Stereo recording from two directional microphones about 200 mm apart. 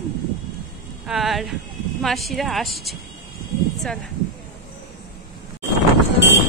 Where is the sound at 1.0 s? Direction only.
Centre (ahead or behind).